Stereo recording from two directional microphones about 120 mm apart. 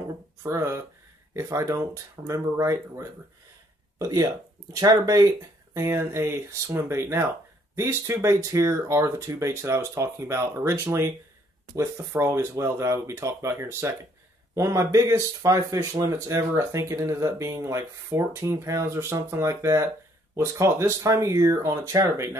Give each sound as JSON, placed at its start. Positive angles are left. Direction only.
{"t": 0.4, "sound": "speech", "side_deg": -25}